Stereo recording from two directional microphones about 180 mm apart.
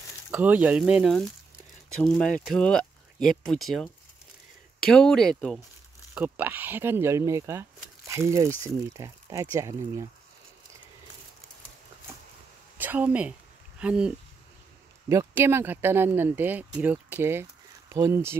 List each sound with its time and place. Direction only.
0.3 s speech: 10° right (ahead or behind)
6.1 s speech: 10° right (ahead or behind)
12.7 s a woman's voice: 10° right (ahead or behind)